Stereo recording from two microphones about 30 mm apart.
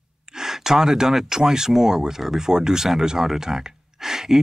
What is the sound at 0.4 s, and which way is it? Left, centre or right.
Gasp, centre.